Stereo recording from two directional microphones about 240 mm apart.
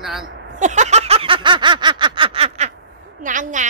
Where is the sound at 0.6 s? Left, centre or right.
Right.